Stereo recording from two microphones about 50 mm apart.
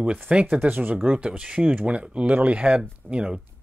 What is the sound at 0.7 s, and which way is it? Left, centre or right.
Speech, right.